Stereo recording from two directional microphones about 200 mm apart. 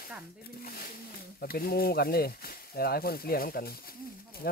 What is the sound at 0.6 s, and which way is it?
Speech, 50° left (ahead or behind).